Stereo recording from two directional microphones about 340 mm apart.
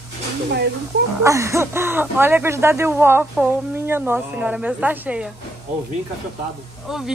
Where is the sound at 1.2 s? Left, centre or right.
Centre.